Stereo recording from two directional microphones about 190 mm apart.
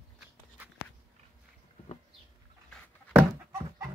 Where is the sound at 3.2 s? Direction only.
15° right (ahead or behind).